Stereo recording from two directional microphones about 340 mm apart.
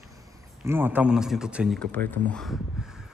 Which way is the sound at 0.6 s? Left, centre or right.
Centre.